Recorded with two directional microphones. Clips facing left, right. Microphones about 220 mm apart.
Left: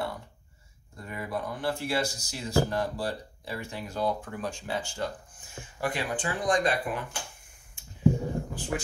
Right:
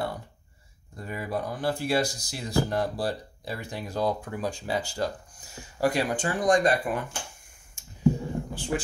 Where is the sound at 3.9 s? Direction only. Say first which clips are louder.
Right 2 dB; 40° right (ahead or behind).